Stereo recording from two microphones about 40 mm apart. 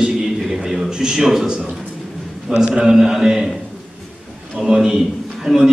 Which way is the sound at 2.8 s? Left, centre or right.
Centre.